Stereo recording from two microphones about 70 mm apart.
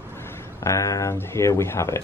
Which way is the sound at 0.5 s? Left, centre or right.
Left.